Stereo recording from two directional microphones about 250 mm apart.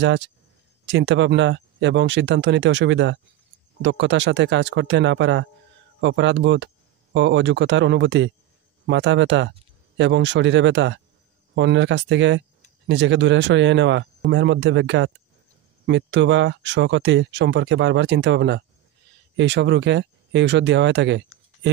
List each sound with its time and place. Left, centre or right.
0.0 s speech: right